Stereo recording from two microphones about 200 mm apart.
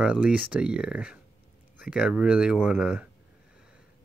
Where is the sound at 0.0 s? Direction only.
5° right (ahead or behind).